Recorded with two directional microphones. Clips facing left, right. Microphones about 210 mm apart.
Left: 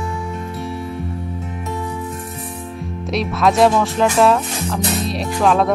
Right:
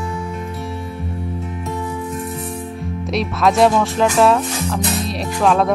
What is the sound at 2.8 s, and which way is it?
Speech, centre (ahead or behind).